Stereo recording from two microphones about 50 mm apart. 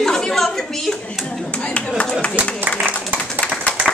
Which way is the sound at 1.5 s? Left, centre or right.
Left.